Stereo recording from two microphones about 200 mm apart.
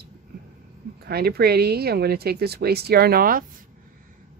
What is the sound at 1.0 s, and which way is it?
Speech, 50° right (ahead or behind).